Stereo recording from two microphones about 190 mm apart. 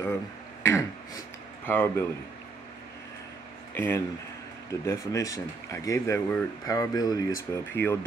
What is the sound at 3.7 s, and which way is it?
Speech, 10° left (ahead or behind).